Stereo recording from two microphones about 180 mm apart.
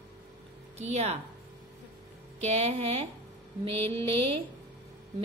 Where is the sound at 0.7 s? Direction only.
40° right (ahead or behind).